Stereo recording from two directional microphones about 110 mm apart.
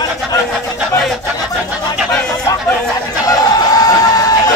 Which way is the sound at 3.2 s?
35° left (ahead or behind).